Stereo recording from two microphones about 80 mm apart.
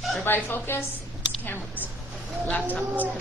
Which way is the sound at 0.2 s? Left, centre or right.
Left.